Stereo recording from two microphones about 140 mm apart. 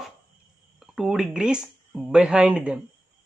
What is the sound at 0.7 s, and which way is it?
Speech, centre (ahead or behind).